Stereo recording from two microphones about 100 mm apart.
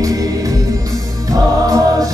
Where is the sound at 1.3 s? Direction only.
35° right (ahead or behind).